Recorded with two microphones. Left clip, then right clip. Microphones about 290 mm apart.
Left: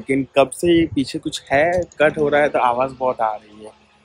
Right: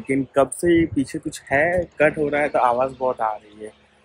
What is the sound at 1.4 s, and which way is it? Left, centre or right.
Speech, centre.